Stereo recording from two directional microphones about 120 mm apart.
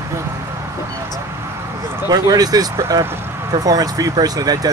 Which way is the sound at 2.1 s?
35° right (ahead or behind).